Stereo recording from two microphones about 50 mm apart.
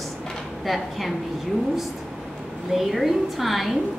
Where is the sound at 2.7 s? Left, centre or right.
Centre.